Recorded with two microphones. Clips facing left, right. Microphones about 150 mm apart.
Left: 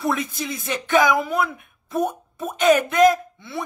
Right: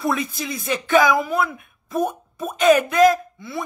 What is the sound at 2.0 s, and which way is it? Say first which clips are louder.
Speech: even; 20° left (ahead or behind).